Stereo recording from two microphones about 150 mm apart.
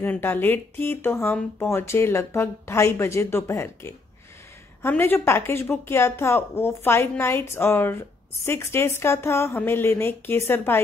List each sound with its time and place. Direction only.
0.0 s a woman's voice: 15° left (ahead or behind)